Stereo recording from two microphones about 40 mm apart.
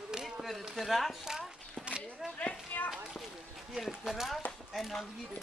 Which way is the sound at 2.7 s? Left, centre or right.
Left.